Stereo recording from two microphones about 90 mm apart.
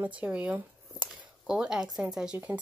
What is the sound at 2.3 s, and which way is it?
Speech, 20° right (ahead or behind).